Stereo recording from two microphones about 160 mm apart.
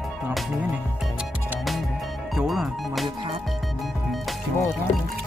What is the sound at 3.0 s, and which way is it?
Speech, 30° right (ahead or behind).